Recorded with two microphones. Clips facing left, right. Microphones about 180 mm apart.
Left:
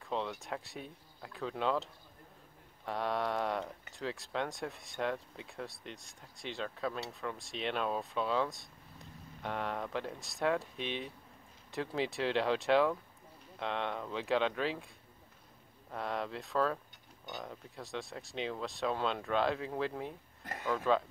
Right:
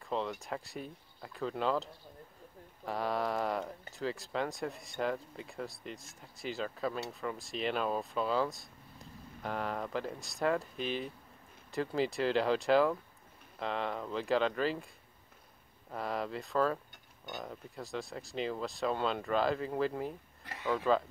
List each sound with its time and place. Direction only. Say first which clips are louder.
0.0 s speech: right 1 dB; centre (ahead or behind)
15.9 s speech: right 1 dB; centre (ahead or behind)